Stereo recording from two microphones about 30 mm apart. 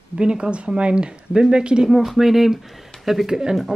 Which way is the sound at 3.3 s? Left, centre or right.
Right.